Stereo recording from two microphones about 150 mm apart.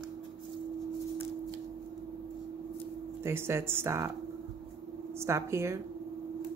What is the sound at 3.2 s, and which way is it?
Speech, 15° right (ahead or behind).